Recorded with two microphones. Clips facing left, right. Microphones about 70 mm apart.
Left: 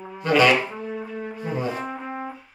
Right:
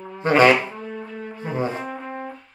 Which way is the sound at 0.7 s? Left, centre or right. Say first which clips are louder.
Left 1 dB; centre.